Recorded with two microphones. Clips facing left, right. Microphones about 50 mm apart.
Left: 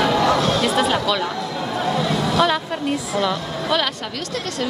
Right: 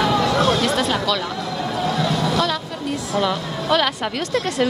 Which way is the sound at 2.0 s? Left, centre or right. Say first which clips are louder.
Left 3 dB; left.